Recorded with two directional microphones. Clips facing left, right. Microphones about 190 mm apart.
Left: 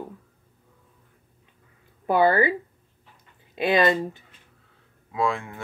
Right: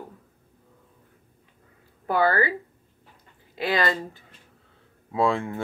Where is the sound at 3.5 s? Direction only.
20° left (ahead or behind).